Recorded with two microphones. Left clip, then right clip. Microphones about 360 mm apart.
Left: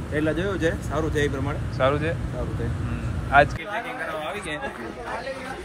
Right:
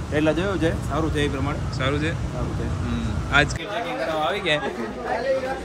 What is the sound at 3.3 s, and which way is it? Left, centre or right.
Speech, centre.